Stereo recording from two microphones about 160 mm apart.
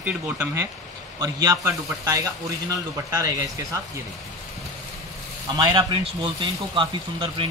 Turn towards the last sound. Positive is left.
turn(degrees=-35)  # may be behind; listen again after turning